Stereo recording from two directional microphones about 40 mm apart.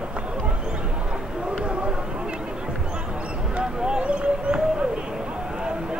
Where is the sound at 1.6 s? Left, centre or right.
Right.